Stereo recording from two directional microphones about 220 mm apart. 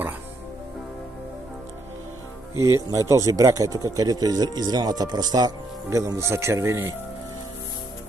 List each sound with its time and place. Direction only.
2.9 s speech: 15° right (ahead or behind)